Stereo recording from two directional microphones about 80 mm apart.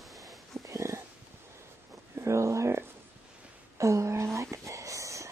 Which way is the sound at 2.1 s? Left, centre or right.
Right.